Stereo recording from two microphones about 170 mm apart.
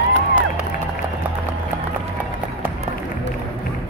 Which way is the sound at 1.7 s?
10° right (ahead or behind).